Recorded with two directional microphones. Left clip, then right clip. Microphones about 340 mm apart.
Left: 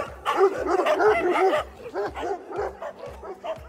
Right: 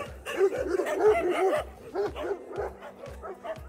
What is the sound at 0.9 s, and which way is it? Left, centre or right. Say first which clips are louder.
Speech: left 3 dB; left.